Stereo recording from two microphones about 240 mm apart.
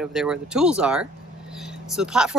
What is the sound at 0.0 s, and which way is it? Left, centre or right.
Speech, centre.